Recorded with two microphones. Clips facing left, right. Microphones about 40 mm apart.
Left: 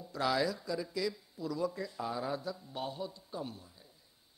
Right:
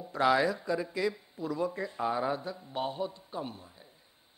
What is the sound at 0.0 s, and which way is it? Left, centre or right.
Speech, right.